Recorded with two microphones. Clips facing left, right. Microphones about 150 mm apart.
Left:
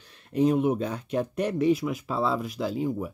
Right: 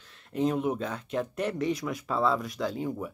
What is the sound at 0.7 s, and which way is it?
Speech, 15° left (ahead or behind).